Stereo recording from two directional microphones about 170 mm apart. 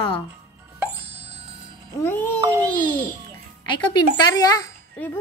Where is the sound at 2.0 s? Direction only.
15° left (ahead or behind).